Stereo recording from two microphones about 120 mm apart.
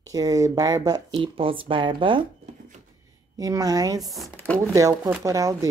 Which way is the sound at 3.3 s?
30° right (ahead or behind).